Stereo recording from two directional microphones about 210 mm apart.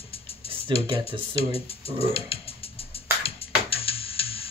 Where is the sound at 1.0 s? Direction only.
25° left (ahead or behind).